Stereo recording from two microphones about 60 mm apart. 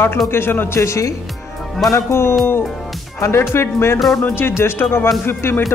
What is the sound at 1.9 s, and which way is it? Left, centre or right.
Speech, left.